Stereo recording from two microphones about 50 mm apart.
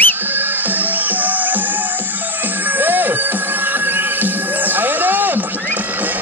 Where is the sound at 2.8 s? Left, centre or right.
Right.